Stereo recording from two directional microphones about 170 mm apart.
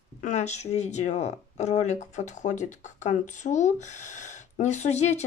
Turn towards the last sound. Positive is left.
turn(degrees=40)  # may be behind; listen again after turning